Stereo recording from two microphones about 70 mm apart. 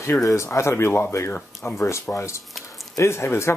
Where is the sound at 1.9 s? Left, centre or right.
Left.